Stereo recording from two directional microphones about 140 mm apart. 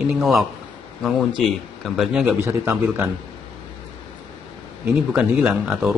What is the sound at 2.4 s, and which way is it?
Speech, 15° right (ahead or behind).